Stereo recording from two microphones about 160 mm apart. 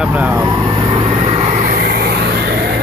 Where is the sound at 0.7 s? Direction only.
35° right (ahead or behind).